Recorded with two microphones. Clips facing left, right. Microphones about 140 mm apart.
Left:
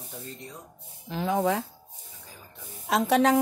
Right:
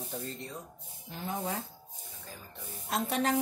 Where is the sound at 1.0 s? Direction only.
90° left.